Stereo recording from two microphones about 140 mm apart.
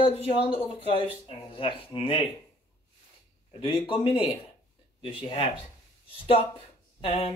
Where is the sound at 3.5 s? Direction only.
40° left (ahead or behind).